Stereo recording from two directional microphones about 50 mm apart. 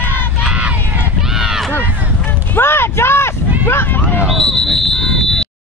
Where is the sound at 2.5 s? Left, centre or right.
Left.